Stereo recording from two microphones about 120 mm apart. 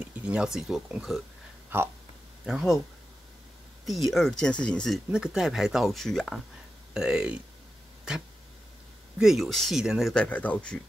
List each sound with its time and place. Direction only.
0.1 s speech: 10° right (ahead or behind)
1.7 s speech: 15° right (ahead or behind)
2.4 s speech: 5° right (ahead or behind)
3.8 s speech: centre (ahead or behind)
9.2 s speech: centre (ahead or behind)
10.1 s speech: 10° left (ahead or behind)